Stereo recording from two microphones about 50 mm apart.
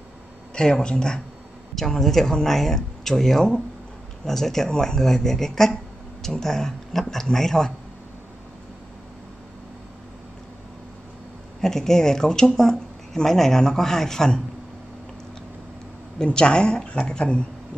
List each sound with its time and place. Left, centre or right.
0.6 s speech: centre
11.6 s speech: centre
16.3 s speech: centre